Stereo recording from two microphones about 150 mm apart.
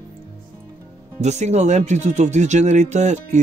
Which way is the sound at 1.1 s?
50° right (ahead or behind).